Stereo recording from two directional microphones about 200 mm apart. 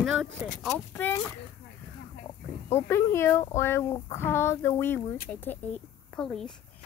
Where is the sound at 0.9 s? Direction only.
10° left (ahead or behind).